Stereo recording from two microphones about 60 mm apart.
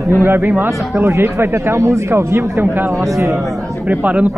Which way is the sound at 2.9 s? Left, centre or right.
Right.